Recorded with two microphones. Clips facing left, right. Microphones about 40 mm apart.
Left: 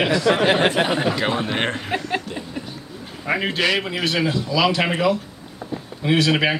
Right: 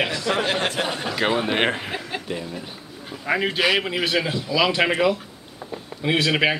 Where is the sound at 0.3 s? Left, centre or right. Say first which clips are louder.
Left 7 dB; left.